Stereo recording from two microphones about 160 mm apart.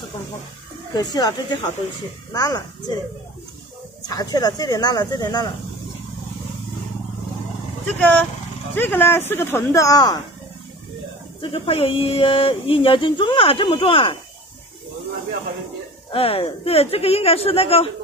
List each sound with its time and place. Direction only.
0.9 s speech: 25° left (ahead or behind)
4.1 s speech: 25° left (ahead or behind)
8.0 s speech: 10° left (ahead or behind)
11.4 s speech: 35° left (ahead or behind)
16.1 s speech: 35° left (ahead or behind)